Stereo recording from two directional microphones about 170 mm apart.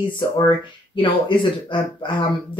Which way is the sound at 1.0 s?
30° left (ahead or behind).